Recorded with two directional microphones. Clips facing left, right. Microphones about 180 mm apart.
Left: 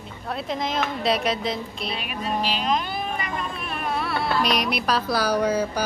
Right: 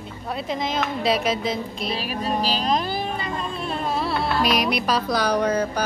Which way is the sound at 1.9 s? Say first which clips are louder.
Right 5 dB; 35° right (ahead or behind).